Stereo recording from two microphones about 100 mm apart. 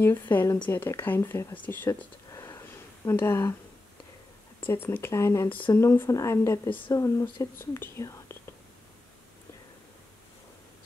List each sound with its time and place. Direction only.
0.0 s speech: 20° left (ahead or behind)
2.3 s a sound: 30° left (ahead or behind)
4.6 s speech: 20° left (ahead or behind)